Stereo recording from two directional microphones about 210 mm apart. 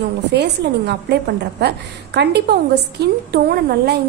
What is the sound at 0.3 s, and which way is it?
Speech, 55° right (ahead or behind).